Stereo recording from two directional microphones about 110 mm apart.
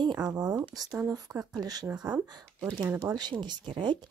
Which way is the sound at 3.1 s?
40° right (ahead or behind).